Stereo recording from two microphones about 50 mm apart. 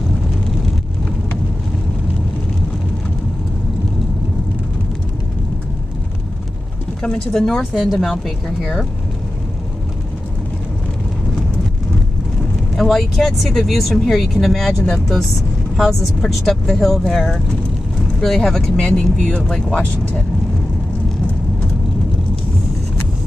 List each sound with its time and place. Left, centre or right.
7.0 s speech: centre
12.7 s speech: centre